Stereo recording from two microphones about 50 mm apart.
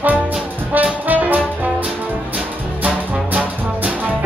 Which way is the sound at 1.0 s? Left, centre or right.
Right.